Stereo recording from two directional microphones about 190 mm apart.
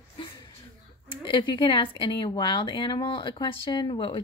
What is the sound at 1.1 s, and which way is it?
Speech, 25° left (ahead or behind).